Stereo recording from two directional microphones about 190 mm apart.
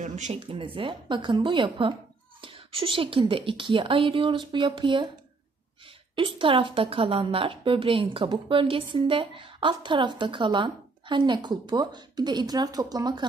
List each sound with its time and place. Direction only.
0.0 s a woman's voice: 40° right (ahead or behind); by 5.1 s 25° right (ahead or behind)
6.1 s a woman's voice: 25° right (ahead or behind)